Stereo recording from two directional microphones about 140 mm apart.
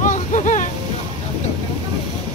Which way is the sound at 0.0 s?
60° left (ahead or behind).